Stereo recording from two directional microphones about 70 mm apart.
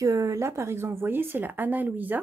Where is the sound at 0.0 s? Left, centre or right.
Right.